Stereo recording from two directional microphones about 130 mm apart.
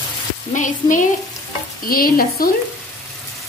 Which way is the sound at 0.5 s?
75° left (ahead or behind).